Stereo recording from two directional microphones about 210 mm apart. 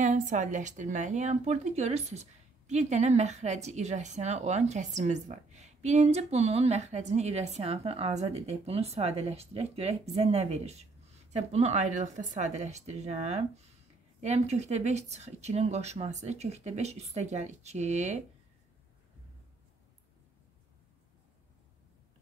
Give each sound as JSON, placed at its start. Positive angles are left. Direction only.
{"t": 0.0, "sound": "a woman's voice", "side_deg": -35}